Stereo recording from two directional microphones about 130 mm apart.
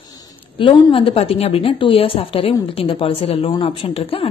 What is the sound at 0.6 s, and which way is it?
A woman's voice, 40° left (ahead or behind).